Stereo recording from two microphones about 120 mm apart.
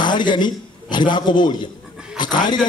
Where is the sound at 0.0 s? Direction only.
40° left (ahead or behind).